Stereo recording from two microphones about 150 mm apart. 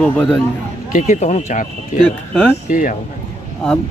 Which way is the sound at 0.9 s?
60° left (ahead or behind).